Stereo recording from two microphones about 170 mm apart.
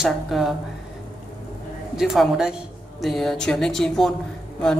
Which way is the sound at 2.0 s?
5° right (ahead or behind).